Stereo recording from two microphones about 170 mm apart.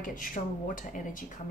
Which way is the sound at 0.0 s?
50° left (ahead or behind).